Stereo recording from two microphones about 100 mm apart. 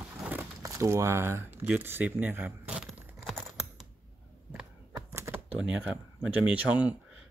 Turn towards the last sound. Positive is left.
turn(degrees=-15)  # may be behind; listen again after turning